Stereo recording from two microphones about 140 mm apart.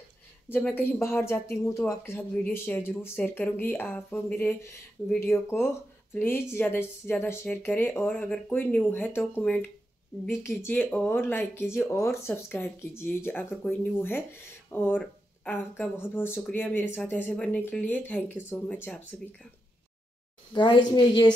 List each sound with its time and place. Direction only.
0.5 s a woman's voice: 10° left (ahead or behind)
20.5 s a woman's voice: 35° left (ahead or behind)